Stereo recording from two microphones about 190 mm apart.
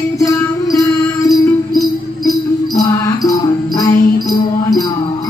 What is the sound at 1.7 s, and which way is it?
Music, centre (ahead or behind).